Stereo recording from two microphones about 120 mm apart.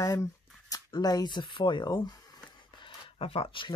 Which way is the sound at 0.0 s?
30° left (ahead or behind).